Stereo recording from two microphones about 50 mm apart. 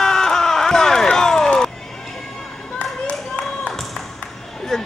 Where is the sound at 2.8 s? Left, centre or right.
Centre.